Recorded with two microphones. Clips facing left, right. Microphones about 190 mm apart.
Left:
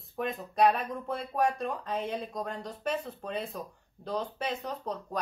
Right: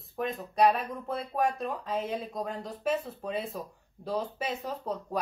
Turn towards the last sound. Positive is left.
turn(degrees=-5)  # may be behind; listen again after turning